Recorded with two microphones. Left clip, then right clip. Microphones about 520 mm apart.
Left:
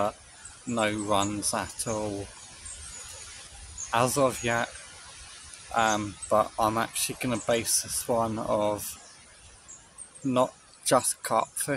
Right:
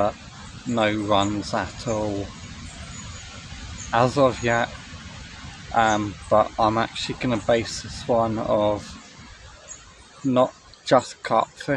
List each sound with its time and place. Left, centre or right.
0.7 s speech: left
3.9 s speech: left
5.7 s speech: left
10.3 s speech: left